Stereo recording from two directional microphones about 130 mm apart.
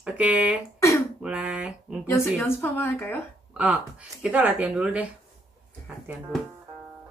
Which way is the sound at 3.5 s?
10° right (ahead or behind).